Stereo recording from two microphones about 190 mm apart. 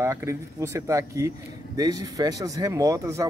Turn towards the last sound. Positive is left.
turn(degrees=-15)  # may be behind; listen again after turning